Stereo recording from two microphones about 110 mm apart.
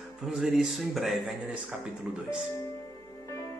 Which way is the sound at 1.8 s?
5° right (ahead or behind).